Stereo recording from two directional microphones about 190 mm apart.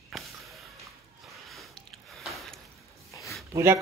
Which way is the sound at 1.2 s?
Centre (ahead or behind).